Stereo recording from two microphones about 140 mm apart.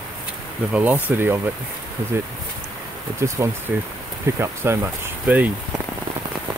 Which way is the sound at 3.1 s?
20° right (ahead or behind).